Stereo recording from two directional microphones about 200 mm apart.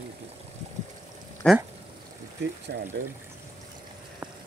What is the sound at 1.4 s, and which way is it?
Speech, 5° left (ahead or behind).